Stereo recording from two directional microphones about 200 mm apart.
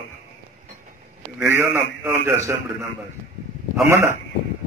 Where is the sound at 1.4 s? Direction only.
10° right (ahead or behind).